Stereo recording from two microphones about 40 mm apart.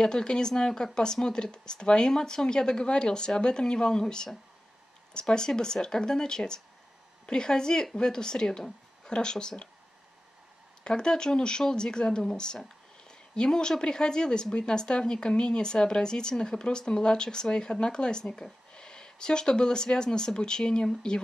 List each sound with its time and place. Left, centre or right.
0.0 s speech: centre
10.8 s speech: centre